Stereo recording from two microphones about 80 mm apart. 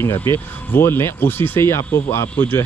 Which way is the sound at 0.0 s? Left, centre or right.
Left.